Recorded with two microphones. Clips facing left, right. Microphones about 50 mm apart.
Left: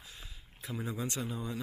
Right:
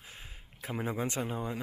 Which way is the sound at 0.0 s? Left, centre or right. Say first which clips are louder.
Right 2 dB; right.